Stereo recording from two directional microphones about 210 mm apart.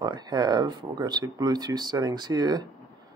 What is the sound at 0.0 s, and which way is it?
Speech, 20° right (ahead or behind).